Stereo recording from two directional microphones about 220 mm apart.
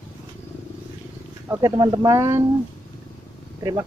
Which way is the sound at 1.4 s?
15° right (ahead or behind).